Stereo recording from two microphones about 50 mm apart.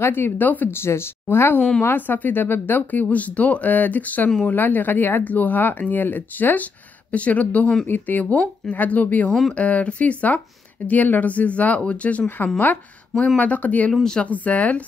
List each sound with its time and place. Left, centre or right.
0.0 s speech: left
0.7 s speech: left
1.8 s speech: left